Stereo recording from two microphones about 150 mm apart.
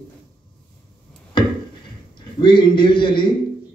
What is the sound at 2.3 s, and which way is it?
Speech, 30° left (ahead or behind).